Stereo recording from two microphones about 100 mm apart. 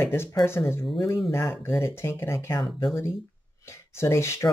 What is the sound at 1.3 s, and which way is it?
Speech, 25° left (ahead or behind).